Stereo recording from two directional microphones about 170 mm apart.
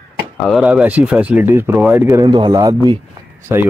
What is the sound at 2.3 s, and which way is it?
Speech, 25° right (ahead or behind).